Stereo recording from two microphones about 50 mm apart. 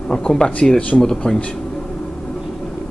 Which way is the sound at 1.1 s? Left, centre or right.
Left.